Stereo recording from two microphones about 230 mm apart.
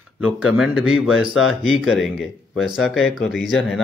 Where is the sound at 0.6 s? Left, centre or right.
Centre.